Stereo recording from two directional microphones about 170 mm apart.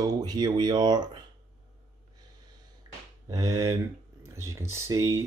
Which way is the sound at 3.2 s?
20° right (ahead or behind).